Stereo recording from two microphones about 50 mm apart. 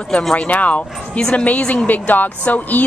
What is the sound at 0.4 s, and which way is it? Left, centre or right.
A woman's voice, left.